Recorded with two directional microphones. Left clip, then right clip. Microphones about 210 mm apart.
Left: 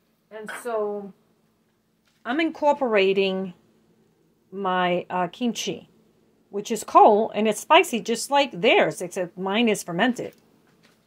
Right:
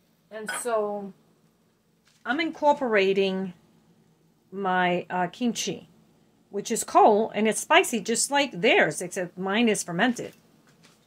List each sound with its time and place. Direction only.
0.7 s a woman's voice: 15° left (ahead or behind)
2.2 s a woman's voice: 30° left (ahead or behind)